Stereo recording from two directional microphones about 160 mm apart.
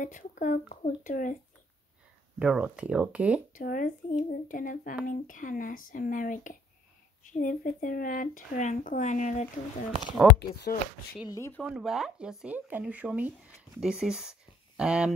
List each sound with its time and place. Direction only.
0.0 s speech: 55° left (ahead or behind)
2.3 s speech: 5° right (ahead or behind)
3.5 s speech: 60° left (ahead or behind)
10.2 s speech: centre (ahead or behind)
10.5 s speech: 70° left (ahead or behind)
11.2 s speech: 15° left (ahead or behind)
11.6 s speech: 5° right (ahead or behind)